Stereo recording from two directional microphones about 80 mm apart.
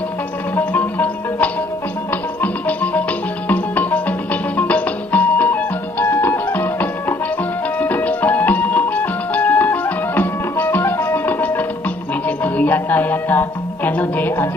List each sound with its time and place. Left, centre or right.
0.6 s music: left